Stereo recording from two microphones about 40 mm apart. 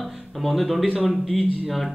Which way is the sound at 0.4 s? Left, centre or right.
Centre.